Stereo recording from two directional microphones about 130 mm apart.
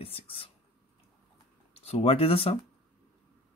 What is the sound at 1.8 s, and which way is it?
Speech, 45° left (ahead or behind).